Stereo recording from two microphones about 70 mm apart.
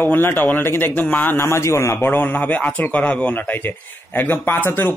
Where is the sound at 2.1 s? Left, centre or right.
Left.